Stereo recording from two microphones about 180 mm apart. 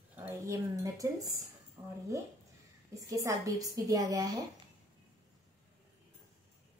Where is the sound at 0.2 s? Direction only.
15° right (ahead or behind).